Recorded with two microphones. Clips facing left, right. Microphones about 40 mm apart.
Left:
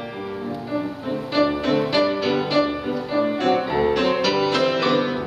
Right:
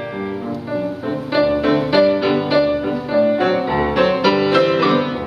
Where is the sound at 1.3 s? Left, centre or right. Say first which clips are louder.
Right 4 dB; centre.